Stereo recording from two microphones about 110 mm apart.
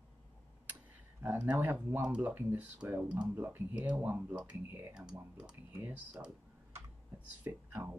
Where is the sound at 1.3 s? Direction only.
15° right (ahead or behind).